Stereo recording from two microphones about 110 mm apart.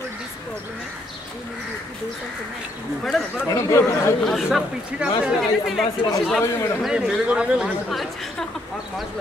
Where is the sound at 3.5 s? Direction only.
25° left (ahead or behind).